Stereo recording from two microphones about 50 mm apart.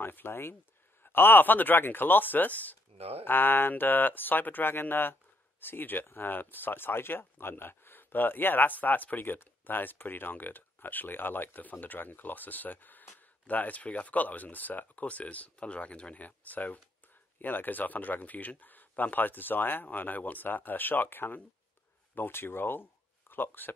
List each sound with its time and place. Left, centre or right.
0.0 s speech: left